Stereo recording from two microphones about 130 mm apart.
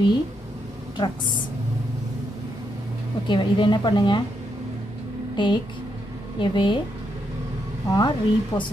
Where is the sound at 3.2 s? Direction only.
35° left (ahead or behind).